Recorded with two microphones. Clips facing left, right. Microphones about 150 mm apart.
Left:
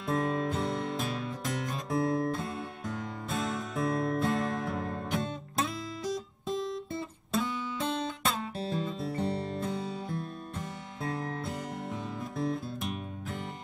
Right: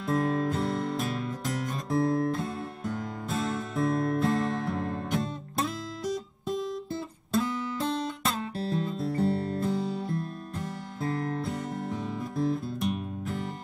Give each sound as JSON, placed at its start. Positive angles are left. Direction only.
{"t": 0.0, "sound": "music", "side_deg": 0}